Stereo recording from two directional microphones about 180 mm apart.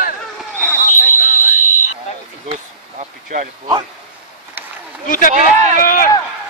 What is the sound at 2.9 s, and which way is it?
Vehicle, 45° right (ahead or behind).